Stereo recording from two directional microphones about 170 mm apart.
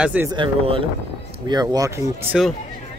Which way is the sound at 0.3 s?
30° right (ahead or behind).